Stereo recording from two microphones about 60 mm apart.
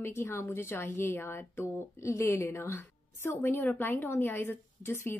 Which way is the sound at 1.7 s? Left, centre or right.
Left.